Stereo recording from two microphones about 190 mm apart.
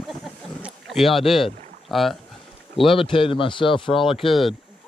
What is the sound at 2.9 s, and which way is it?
A man's voice, 25° left (ahead or behind).